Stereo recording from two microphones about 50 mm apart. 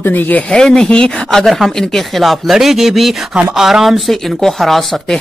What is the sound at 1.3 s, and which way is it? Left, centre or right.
Speech, centre.